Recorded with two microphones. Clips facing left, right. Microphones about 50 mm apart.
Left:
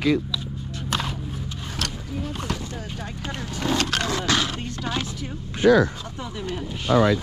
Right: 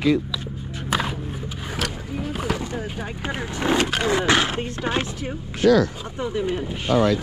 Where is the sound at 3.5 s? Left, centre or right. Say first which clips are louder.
Right 3 dB; right.